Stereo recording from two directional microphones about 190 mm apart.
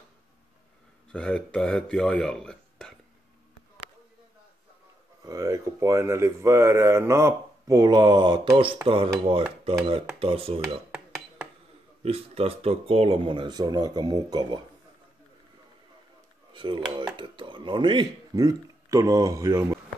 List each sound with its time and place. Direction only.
1.1 s speech: 5° left (ahead or behind)
5.2 s speech: 20° right (ahead or behind)
12.0 s speech: 30° right (ahead or behind)
16.5 s speech: 25° right (ahead or behind)